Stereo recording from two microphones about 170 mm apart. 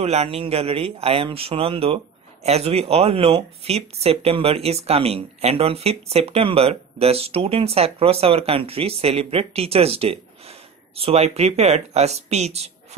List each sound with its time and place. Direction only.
0.0 s speech: 40° right (ahead or behind)